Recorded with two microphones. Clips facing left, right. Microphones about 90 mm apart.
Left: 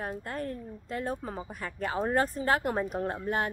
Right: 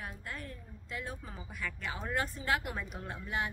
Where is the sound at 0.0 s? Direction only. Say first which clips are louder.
Left 9 dB; 40° left (ahead or behind).